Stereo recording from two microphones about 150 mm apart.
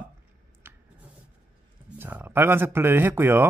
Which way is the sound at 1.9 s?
15° right (ahead or behind).